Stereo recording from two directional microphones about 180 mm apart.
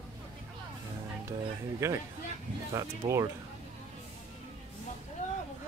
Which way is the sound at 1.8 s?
15° right (ahead or behind).